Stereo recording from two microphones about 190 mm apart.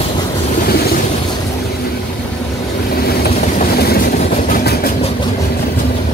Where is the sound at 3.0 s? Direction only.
55° left (ahead or behind).